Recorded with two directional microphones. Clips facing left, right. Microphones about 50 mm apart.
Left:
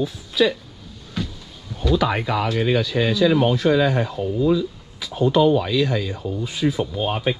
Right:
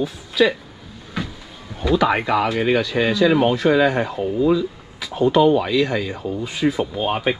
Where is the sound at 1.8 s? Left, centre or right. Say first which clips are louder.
Right 3 dB; right.